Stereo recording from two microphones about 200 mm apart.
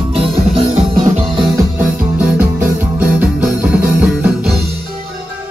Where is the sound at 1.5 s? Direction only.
5° right (ahead or behind).